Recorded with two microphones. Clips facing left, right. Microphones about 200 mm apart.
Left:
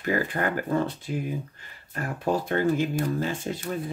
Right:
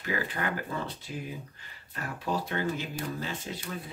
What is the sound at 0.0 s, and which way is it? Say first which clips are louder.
Speech: left 6 dB; 50° left (ahead or behind).